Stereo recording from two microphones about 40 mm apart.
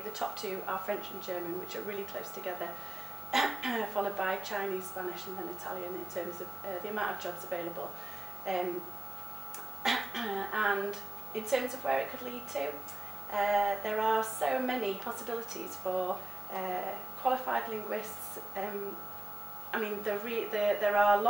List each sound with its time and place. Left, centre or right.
0.0 s a woman's voice: centre
9.8 s a woman's voice: centre